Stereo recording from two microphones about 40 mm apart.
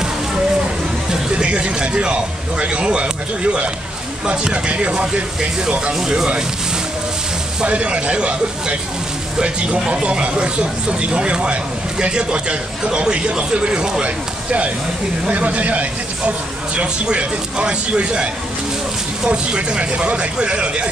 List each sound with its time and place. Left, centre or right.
1.3 s speech: right
7.6 s speech: right
15.2 s a man's voice: right